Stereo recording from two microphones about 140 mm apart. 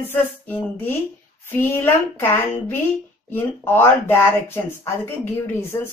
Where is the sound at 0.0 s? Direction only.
15° left (ahead or behind).